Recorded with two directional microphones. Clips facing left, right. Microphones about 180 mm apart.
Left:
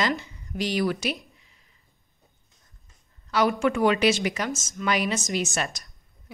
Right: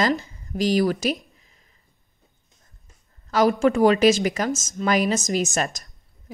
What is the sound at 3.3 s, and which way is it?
A woman's voice, 40° right (ahead or behind).